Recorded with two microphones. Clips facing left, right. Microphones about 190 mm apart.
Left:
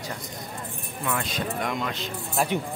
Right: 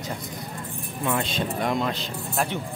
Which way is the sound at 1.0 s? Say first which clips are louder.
Right 3 dB; 25° right (ahead or behind).